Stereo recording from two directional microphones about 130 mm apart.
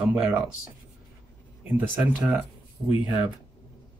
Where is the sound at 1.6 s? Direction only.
10° right (ahead or behind).